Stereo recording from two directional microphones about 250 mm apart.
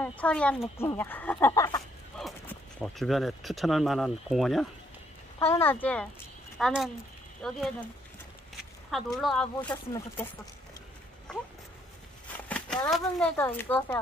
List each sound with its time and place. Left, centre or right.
0.0 s speech: centre
2.1 s horse: centre
2.8 s speech: centre
8.9 s speech: centre
9.7 s speech: centre
11.3 s speech: centre
12.4 s speech: centre